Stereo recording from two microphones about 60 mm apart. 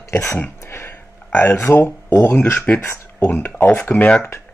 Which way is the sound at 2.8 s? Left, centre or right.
Left.